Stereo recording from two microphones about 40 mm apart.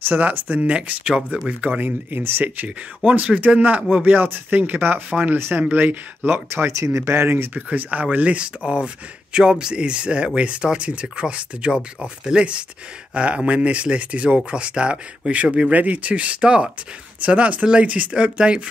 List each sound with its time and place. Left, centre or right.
0.2 s speech: right
0.7 s speech: right
2.4 s speech: right
3.0 s speech: right
3.3 s speech: right
4.0 s speech: right
7.5 s speech: right
15.7 s speech: right
17.2 s speech: right